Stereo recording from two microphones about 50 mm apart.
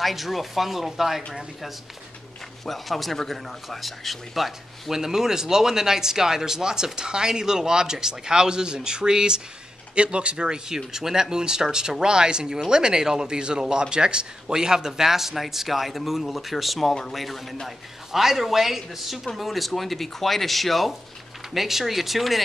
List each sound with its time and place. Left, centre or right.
0.0 s speech: centre
2.6 s a man's voice: centre